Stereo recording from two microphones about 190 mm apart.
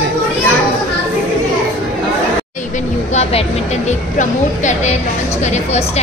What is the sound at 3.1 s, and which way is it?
Speech, 35° left (ahead or behind).